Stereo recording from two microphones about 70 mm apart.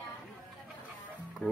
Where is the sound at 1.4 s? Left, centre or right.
Centre.